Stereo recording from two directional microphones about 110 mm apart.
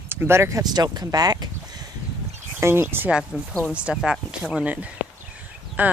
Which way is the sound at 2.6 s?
20° right (ahead or behind).